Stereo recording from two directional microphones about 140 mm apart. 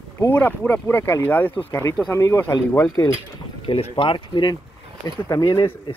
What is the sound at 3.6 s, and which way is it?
Speech, 45° left (ahead or behind).